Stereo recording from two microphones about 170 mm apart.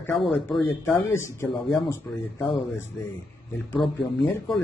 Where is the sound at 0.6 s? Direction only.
10° left (ahead or behind).